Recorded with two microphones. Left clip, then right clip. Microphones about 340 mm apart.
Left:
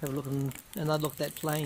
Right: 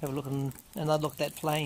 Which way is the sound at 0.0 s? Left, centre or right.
Centre.